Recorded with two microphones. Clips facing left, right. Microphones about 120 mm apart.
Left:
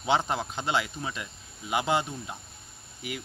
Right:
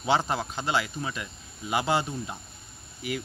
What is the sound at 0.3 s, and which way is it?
Speech, 20° left (ahead or behind).